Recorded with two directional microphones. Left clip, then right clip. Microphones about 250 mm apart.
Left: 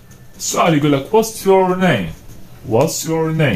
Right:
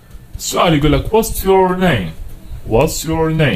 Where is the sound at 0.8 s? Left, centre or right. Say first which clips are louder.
Even; right.